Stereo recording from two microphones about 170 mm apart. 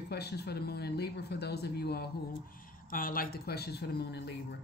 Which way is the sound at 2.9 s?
55° left (ahead or behind).